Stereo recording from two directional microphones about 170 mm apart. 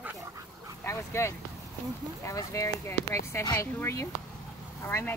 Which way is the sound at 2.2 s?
20° left (ahead or behind).